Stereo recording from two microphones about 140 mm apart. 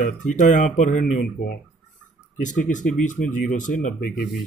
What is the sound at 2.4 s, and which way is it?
Speech, 65° left (ahead or behind).